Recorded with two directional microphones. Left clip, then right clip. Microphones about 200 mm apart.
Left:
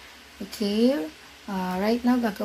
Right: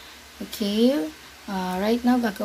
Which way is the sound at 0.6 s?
5° left (ahead or behind).